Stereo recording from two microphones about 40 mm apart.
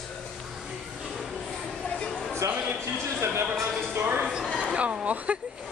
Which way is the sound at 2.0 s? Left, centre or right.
Left.